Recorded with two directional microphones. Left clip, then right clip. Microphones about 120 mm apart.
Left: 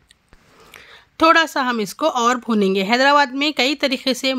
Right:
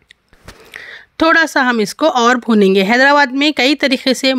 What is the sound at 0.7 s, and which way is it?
Speech, 40° right (ahead or behind).